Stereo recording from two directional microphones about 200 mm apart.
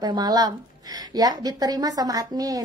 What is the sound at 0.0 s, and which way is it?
A woman's voice, 20° right (ahead or behind).